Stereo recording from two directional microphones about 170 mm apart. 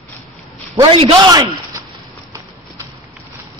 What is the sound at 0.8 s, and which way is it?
Speech, 30° right (ahead or behind).